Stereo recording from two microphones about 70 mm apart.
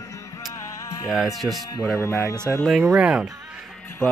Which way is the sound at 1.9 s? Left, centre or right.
Left.